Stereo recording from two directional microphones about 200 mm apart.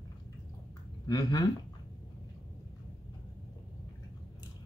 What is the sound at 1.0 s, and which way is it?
Speech, 20° left (ahead or behind).